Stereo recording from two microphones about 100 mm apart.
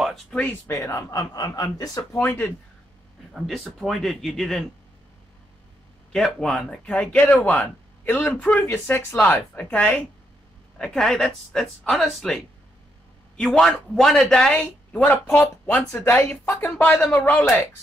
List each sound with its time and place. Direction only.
0.7 s a man's voice: 30° left (ahead or behind)
2.2 s speech: 20° left (ahead or behind)
3.3 s speech: centre (ahead or behind)
6.1 s a woman's voice: 5° left (ahead or behind)